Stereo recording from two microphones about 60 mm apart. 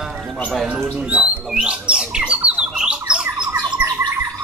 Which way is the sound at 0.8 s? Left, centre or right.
Centre.